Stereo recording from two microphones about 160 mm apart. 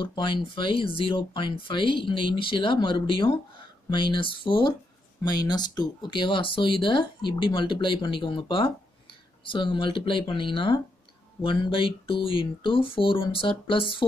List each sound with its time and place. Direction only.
0.0 s speech: 30° left (ahead or behind)